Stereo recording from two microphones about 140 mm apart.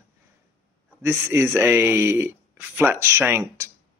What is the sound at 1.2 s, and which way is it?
Speech, 15° right (ahead or behind).